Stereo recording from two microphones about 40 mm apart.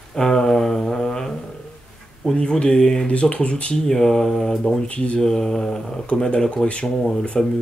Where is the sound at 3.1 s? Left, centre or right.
Left.